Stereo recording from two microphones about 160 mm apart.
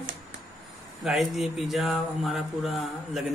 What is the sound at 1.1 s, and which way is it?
Mantra, centre (ahead or behind).